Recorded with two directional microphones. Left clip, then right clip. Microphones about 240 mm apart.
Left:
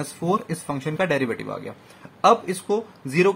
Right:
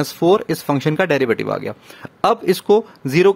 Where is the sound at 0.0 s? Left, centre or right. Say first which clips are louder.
Right 9 dB; right.